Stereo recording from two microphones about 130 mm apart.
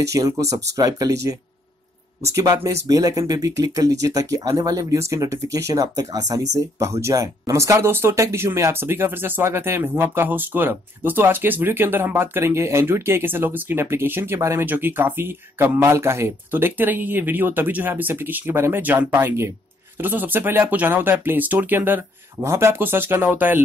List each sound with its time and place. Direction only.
0.0 s speech: 25° right (ahead or behind)